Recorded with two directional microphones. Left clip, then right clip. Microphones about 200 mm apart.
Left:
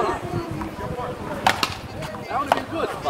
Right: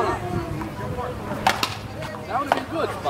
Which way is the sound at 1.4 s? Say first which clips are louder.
Left 1 dB; 25° left (ahead or behind).